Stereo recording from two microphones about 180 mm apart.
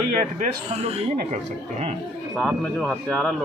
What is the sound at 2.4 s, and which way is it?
Speech, centre (ahead or behind).